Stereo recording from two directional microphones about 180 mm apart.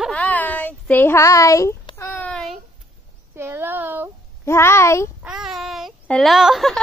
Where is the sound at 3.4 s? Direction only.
15° right (ahead or behind).